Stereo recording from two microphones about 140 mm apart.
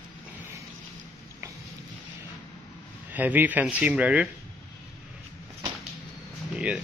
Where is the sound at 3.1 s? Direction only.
10° right (ahead or behind).